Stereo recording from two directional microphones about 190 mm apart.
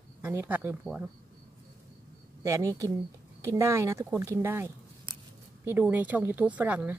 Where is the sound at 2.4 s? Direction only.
15° right (ahead or behind).